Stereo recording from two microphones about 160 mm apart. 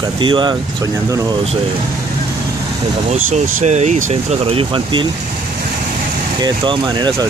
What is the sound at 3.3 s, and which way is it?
Speech, 45° right (ahead or behind).